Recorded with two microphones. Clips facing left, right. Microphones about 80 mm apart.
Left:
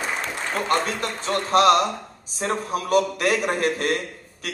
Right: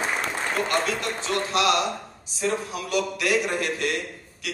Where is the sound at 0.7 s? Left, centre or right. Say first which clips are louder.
Left 2 dB; left.